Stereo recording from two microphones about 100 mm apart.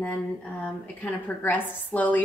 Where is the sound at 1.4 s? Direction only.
15° left (ahead or behind).